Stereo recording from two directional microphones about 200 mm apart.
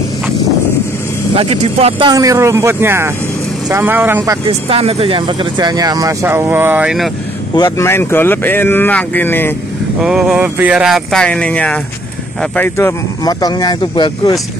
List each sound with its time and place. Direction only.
1.3 s speech: 30° right (ahead or behind); by 4.4 s 10° right (ahead or behind)
4.5 s speech: 30° right (ahead or behind); by 7.1 s 5° right (ahead or behind)
7.5 s speech: 15° left (ahead or behind)
10.0 s speech: 5° right (ahead or behind); by 14.4 s 20° left (ahead or behind)